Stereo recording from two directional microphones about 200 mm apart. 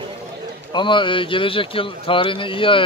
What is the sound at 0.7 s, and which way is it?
A man's voice, 25° left (ahead or behind).